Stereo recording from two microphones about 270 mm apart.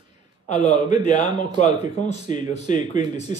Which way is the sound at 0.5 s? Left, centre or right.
Left.